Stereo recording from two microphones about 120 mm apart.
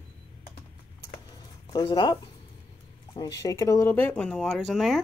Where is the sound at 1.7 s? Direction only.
35° left (ahead or behind).